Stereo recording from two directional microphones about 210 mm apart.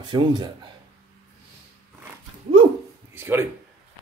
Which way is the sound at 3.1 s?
10° right (ahead or behind).